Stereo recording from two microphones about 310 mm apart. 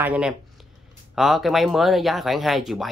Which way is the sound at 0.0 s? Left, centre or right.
Centre.